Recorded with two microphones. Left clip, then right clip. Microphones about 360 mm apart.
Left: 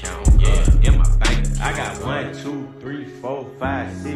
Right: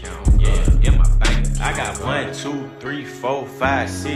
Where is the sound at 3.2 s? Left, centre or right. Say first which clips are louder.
Right 6 dB; right.